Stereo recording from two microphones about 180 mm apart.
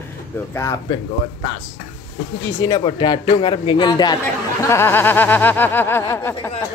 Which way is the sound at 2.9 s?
25° left (ahead or behind).